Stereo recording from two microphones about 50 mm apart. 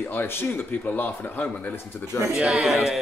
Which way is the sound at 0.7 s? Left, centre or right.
Left.